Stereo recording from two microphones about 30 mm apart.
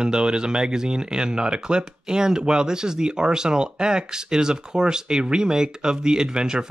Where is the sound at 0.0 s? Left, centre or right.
Right.